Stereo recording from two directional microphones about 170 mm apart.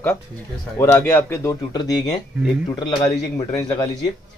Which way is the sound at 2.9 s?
25° left (ahead or behind).